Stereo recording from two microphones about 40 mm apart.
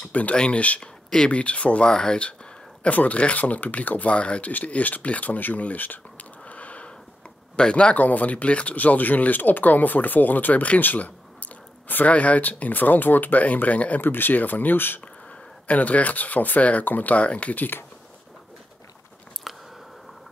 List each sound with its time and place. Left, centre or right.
0.1 s speech: left
1.9 s speech: centre
2.9 s speech: left
6.4 s a sound: left
7.5 s speech: left
8.0 s speech: left
14.0 s speech: left
15.6 s speech: left
17.6 s speech: left
19.5 s biting: centre